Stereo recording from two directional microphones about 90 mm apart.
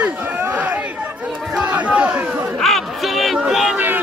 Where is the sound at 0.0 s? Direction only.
15° right (ahead or behind).